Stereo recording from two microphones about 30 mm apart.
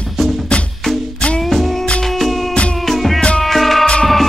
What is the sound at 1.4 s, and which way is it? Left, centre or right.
Music, centre.